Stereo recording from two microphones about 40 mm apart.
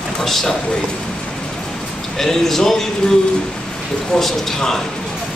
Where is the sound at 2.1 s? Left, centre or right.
Centre.